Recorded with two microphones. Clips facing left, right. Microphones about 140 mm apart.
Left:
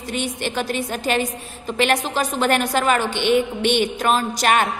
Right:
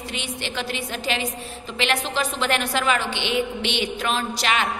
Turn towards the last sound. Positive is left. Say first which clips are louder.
# left 5 dB
turn(degrees=50)  # may be behind; listen again after turning